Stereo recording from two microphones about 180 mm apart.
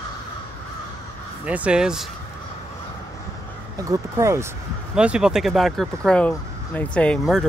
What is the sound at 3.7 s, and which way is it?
Speech, 20° right (ahead or behind).